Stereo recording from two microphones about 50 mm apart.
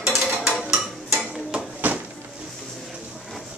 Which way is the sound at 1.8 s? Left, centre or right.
Right.